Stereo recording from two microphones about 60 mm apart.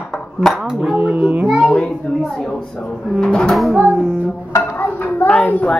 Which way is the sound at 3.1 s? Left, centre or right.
Centre.